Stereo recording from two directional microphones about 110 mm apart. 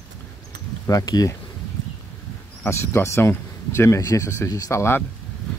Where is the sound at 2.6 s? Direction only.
20° left (ahead or behind).